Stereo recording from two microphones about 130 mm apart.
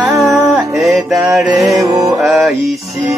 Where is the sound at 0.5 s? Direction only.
Centre (ahead or behind).